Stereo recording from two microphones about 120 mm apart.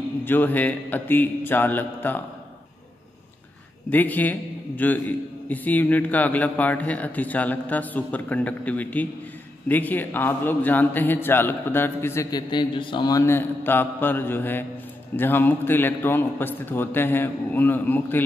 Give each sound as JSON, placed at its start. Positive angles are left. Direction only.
{"t": 0.2, "sound": "a man's voice", "side_deg": 15}
{"t": 3.9, "sound": "a man's voice", "side_deg": 15}
{"t": 12.3, "sound": "a man's voice", "side_deg": 35}
{"t": 13.2, "sound": "a man's voice", "side_deg": 20}